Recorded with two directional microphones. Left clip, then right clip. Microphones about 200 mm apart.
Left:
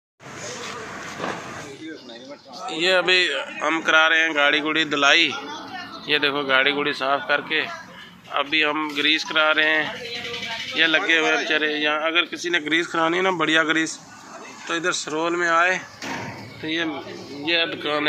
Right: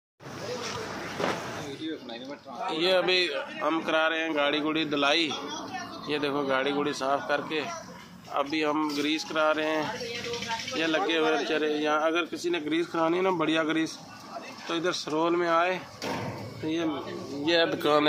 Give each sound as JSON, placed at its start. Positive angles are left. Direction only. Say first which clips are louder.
{"t": 2.7, "sound": "speech", "louder": "left 6 dB", "side_deg": 5}
{"t": 17.6, "sound": "speech", "louder": "right 1 dB", "side_deg": -20}